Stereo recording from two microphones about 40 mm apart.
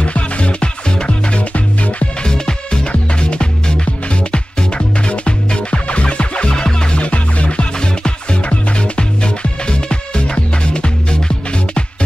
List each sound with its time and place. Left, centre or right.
0.0 s music: left
2.1 s music: centre
7.0 s music: left